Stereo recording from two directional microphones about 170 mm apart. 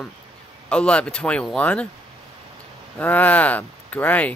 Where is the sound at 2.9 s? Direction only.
10° left (ahead or behind).